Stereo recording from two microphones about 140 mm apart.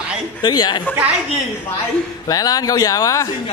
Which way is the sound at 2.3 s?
25° left (ahead or behind).